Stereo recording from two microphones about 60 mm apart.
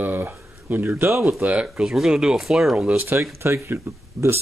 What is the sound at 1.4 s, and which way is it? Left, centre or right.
Speech, right.